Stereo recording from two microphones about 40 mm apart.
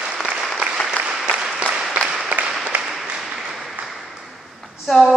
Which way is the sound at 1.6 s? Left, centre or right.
Right.